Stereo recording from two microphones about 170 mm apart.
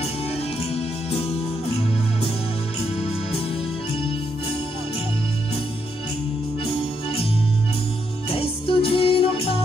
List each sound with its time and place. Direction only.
0.7 s music: 35° left (ahead or behind)
6.6 s music: 35° left (ahead or behind)
8.3 s music: 35° left (ahead or behind)